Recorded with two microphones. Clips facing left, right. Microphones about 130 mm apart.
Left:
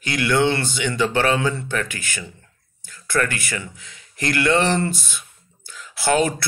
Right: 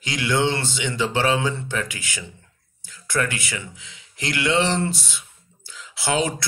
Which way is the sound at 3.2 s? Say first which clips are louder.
Left 2 dB; 55° left (ahead or behind).